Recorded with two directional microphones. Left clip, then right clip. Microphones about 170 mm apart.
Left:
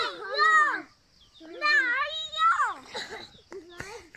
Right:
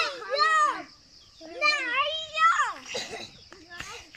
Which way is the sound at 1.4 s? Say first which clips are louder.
Left 2 dB; 5° right (ahead or behind).